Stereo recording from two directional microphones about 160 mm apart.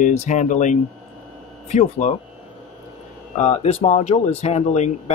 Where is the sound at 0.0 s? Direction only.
50° left (ahead or behind).